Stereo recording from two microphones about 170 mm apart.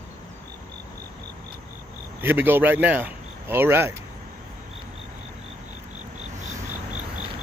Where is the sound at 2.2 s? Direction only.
10° right (ahead or behind).